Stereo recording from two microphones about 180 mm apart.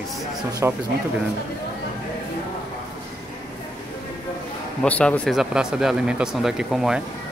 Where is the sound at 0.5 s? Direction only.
20° right (ahead or behind).